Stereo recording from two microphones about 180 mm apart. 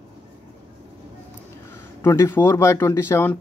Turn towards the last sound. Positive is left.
turn(degrees=15)  # may be behind; listen again after turning